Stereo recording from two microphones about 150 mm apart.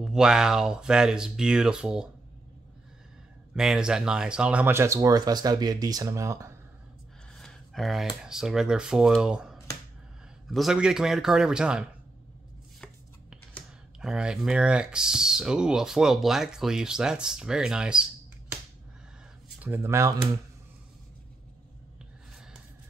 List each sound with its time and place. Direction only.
0.0 s speech: 5° right (ahead or behind)
3.5 s speech: 5° right (ahead or behind); by 6.5 s 20° right (ahead or behind)
7.3 s speech: centre (ahead or behind)
12.8 s speech: centre (ahead or behind)
19.6 s speech: 15° right (ahead or behind)